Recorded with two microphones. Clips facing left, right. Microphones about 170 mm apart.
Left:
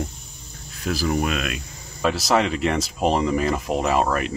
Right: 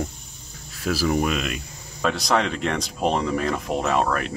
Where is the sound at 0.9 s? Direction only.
Centre (ahead or behind).